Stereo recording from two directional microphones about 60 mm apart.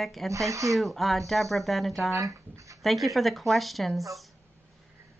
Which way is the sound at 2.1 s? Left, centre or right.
Right.